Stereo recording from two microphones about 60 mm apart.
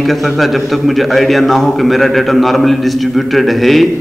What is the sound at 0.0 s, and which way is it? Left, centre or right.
A man's voice, centre.